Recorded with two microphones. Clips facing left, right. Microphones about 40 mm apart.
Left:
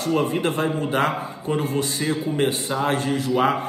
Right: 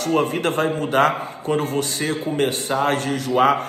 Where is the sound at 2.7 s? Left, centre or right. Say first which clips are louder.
Right 3 dB; right.